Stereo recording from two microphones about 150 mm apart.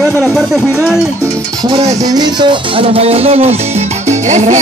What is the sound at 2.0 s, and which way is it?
Speech, 25° right (ahead or behind).